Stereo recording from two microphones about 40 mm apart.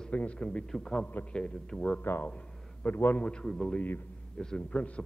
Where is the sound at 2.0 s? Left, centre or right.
Left.